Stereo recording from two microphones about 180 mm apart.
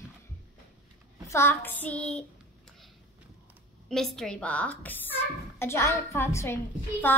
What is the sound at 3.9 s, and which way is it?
A woman's voice, centre (ahead or behind).